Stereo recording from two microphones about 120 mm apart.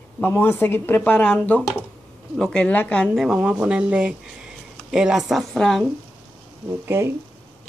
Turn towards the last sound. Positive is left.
turn(degrees=-20)  # may be behind; listen again after turning